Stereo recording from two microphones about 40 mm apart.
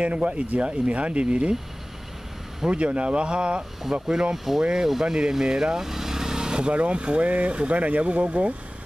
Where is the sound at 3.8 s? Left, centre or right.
Centre; by 8.5 s right.